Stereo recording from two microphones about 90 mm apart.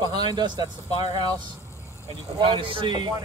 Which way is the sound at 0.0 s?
50° right (ahead or behind).